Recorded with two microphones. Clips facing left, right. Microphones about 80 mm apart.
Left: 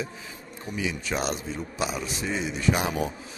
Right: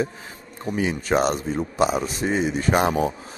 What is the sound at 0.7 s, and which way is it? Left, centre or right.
Speech, right.